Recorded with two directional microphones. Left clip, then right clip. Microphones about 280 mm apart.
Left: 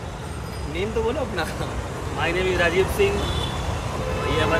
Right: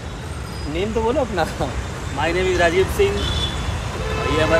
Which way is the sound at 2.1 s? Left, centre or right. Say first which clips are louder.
Right 4 dB; centre.